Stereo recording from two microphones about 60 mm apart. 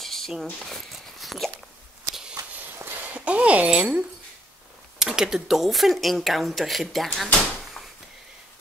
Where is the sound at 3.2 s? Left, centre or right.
Right.